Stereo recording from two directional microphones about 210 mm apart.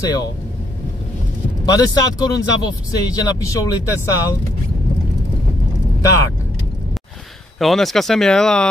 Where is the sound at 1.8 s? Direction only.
15° left (ahead or behind).